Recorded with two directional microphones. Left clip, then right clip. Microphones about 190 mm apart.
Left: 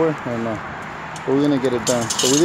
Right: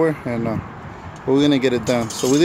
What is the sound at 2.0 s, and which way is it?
Speech, 20° right (ahead or behind).